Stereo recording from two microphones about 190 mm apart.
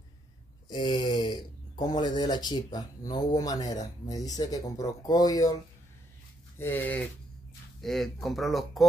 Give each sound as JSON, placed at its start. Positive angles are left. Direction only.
{"t": 0.7, "sound": "speech", "side_deg": 25}
{"t": 6.6, "sound": "speech", "side_deg": 10}
{"t": 7.8, "sound": "speech", "side_deg": 0}